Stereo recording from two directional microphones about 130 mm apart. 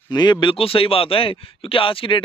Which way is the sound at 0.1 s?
35° left (ahead or behind).